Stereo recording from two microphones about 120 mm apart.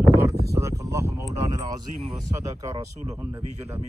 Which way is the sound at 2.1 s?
25° right (ahead or behind).